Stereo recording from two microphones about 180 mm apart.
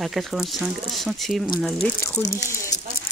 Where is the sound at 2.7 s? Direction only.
40° left (ahead or behind).